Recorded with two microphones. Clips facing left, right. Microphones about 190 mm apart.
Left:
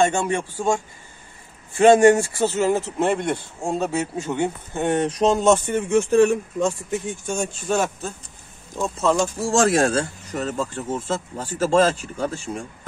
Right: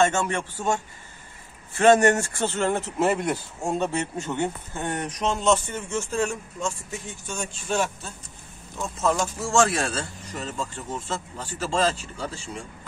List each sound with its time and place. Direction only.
0.0 s speech: 15° left (ahead or behind); by 12.6 s 45° left (ahead or behind)